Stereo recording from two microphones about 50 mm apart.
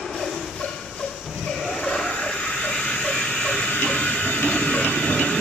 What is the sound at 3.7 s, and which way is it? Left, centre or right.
Train, left.